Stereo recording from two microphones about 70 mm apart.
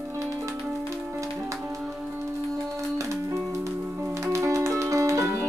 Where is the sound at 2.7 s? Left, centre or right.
Right.